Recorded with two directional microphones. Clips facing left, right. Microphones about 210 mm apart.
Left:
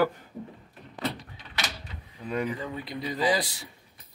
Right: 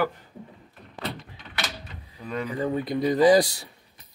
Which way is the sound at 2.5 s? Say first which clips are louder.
Right 9 dB; 45° right (ahead or behind).